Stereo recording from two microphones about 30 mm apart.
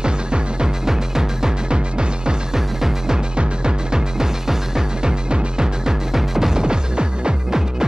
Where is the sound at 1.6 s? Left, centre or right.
Right.